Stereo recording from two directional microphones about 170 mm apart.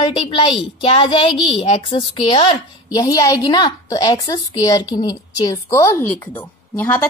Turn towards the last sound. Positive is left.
turn(degrees=10)  # may be behind; listen again after turning